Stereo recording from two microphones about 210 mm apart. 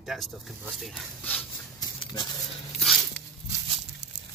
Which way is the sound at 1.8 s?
20° left (ahead or behind).